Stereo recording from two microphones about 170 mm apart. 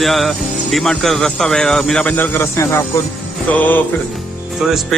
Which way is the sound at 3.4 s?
10° left (ahead or behind).